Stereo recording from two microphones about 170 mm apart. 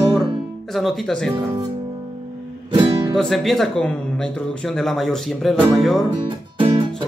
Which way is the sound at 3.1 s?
Centre (ahead or behind).